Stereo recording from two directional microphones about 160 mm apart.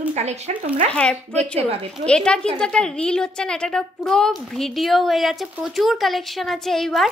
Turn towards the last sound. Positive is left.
turn(degrees=0)  # may be behind; listen again after turning